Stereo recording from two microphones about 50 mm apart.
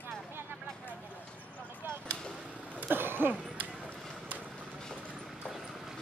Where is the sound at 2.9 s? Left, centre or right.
Right.